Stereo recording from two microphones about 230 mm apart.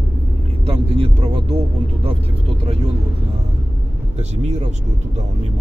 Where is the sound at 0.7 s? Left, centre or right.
Right.